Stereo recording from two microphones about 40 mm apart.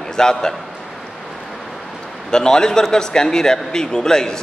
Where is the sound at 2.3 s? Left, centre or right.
Centre.